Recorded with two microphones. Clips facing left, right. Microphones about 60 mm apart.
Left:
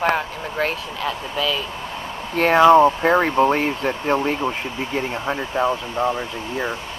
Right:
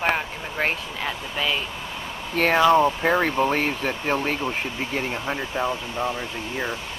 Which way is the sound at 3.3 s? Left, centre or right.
Left.